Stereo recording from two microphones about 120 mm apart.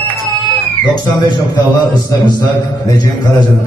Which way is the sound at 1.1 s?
35° left (ahead or behind).